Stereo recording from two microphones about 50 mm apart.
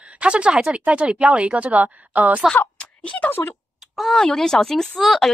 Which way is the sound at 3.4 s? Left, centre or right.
Left.